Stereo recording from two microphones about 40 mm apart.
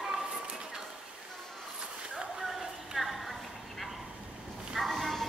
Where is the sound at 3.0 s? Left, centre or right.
Centre.